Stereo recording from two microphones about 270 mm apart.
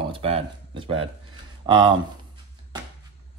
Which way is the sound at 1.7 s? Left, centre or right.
Centre.